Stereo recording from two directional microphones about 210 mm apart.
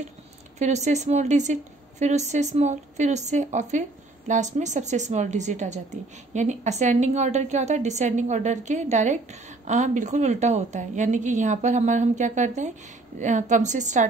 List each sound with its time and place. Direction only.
0.6 s a woman's voice: 35° right (ahead or behind)